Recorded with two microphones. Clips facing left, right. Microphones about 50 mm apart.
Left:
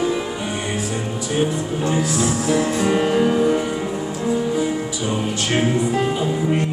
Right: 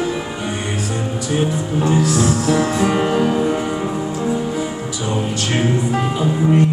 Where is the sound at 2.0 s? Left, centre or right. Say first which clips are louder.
Right 3 dB; centre.